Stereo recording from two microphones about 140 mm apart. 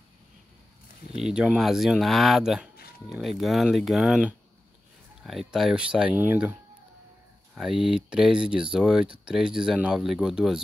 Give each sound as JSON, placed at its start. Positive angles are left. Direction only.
{"t": 1.2, "sound": "speech", "side_deg": -5}